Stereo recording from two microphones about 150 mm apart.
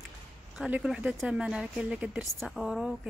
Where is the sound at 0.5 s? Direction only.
5° right (ahead or behind).